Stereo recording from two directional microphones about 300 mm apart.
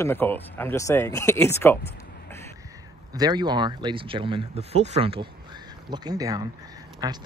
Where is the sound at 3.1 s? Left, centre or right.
Centre.